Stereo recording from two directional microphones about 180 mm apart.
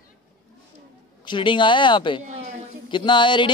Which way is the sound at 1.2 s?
25° left (ahead or behind).